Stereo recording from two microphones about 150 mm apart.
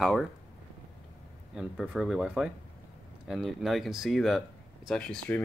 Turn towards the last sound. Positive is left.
turn(degrees=10)  # may be behind; listen again after turning